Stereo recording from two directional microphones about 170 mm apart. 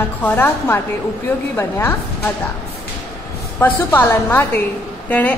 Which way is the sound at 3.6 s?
10° left (ahead or behind).